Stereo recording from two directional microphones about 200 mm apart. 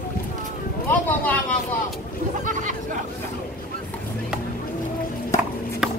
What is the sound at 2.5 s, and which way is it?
Chatter, 40° right (ahead or behind).